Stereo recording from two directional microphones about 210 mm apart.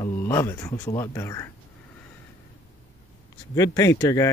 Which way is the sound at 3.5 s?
15° left (ahead or behind).